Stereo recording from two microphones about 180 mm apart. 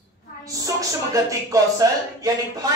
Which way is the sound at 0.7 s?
20° right (ahead or behind).